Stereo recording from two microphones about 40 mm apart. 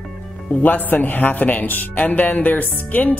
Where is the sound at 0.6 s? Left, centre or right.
Left.